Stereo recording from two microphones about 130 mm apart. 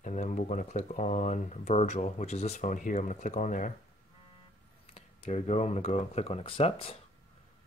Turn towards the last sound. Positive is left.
turn(degrees=45)  # may be behind; listen again after turning